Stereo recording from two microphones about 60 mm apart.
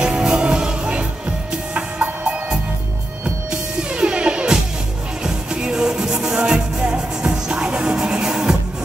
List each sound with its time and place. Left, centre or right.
0.0 s music: centre
3.9 s music: centre